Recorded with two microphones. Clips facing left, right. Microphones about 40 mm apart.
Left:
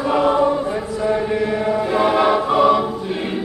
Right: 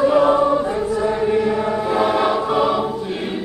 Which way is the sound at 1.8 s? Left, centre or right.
Centre.